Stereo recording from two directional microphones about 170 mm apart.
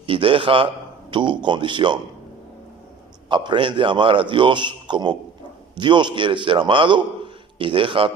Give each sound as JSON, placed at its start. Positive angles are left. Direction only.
{"t": 0.0, "sound": "a man's voice", "side_deg": -30}
{"t": 3.3, "sound": "a man's voice", "side_deg": -30}